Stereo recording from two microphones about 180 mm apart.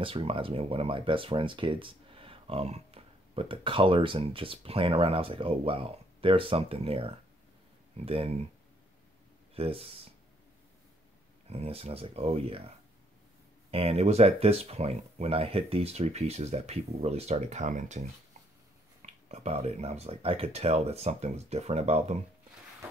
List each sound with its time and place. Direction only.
0.0 s speech: 30° right (ahead or behind)
9.6 s speech: 30° right (ahead or behind)
11.4 s speech: 35° right (ahead or behind)
19.0 s speech: 40° right (ahead or behind)